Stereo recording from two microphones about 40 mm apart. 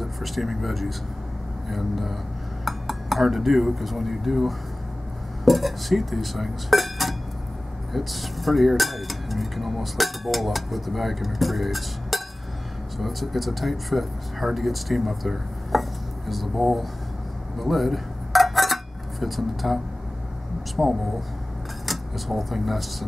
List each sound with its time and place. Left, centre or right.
0.0 s speech: centre
17.6 s dishes: centre
20.8 s speech: centre
21.8 s speech: centre